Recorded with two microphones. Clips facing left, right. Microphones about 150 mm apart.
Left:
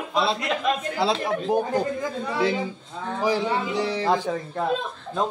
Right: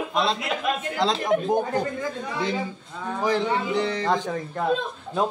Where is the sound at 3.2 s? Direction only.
10° left (ahead or behind).